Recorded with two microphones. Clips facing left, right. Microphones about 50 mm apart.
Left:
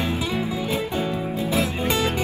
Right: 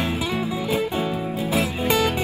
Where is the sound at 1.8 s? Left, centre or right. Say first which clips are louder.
Right 2 dB; centre.